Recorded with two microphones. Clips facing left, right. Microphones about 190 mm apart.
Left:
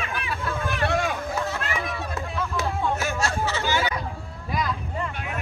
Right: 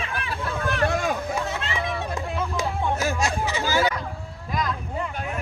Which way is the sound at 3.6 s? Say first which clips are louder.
Right 5 dB; 35° right (ahead or behind).